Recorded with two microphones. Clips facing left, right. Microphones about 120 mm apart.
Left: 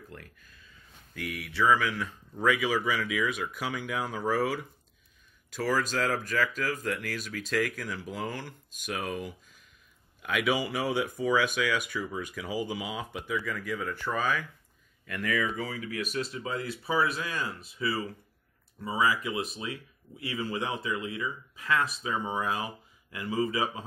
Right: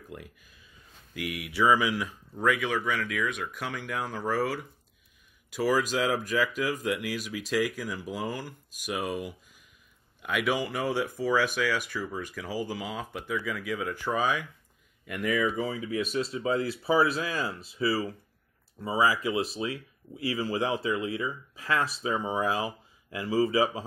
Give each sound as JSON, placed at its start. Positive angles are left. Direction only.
{"t": 0.1, "sound": "speech", "side_deg": -15}
{"t": 5.5, "sound": "speech", "side_deg": -10}